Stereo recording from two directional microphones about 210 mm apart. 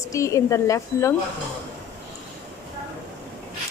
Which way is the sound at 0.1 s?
15° left (ahead or behind).